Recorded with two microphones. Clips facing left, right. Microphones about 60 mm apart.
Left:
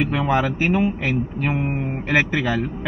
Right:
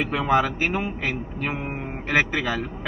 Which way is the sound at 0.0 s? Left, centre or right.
Centre.